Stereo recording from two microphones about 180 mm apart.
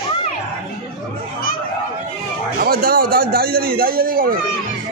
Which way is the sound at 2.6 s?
55° right (ahead or behind).